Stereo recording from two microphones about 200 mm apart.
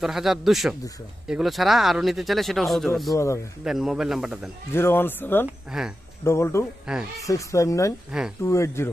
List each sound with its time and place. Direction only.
0.0 s speech: centre (ahead or behind)
4.7 s speech: 10° left (ahead or behind)
5.7 s speech: 5° right (ahead or behind)
6.2 s speech: 15° left (ahead or behind)
6.9 s speech: 5° right (ahead or behind)
7.2 s speech: 15° left (ahead or behind)
8.1 s speech: 5° right (ahead or behind)
8.5 s speech: 15° left (ahead or behind)